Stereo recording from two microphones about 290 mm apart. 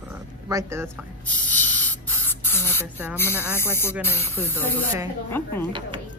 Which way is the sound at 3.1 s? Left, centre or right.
Centre.